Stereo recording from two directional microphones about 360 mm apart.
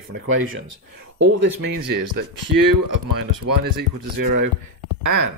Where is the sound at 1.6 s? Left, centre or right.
Right.